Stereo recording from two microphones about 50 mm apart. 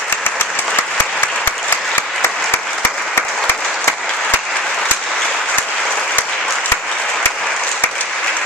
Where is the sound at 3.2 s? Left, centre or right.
Centre.